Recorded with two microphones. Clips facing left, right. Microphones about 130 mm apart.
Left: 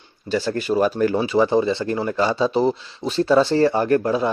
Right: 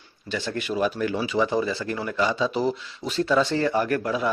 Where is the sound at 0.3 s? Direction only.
40° left (ahead or behind).